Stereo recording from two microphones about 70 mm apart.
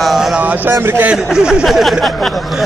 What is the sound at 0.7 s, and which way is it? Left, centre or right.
Speech, right.